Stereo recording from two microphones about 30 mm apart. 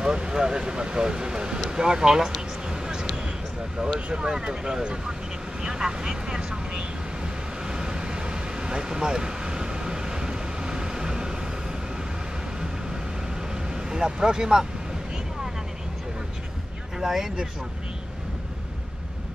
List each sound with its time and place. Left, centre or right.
0.0 s speech: right
2.7 s a sound: right
4.1 s speech: right
7.6 s vehicle: right
13.7 s speech: right
17.0 s speech: centre